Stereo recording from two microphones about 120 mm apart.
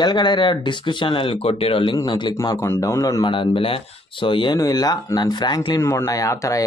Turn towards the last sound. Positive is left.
turn(degrees=25)  # may be behind; listen again after turning